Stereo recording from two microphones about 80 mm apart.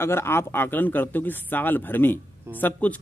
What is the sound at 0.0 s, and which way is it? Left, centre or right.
A man's voice, left.